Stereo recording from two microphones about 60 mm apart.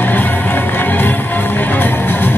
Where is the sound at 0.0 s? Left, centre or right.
Left.